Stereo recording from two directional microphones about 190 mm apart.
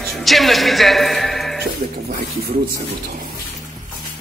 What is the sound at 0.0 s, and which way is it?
Speech, centre (ahead or behind).